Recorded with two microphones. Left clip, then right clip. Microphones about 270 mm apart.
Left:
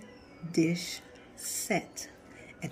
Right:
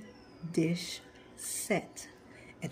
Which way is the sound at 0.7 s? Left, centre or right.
Right.